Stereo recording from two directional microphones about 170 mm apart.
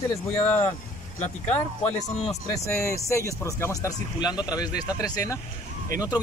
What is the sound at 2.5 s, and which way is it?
Speech, 15° left (ahead or behind).